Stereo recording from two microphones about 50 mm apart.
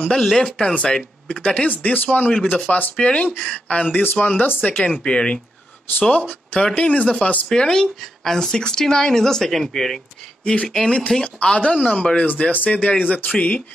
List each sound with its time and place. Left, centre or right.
0.1 s speech: centre
1.7 s speech: left
7.4 s speech: centre
10.4 s speech: centre